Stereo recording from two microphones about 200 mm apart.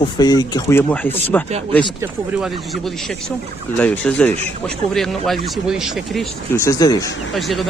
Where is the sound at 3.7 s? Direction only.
5° left (ahead or behind).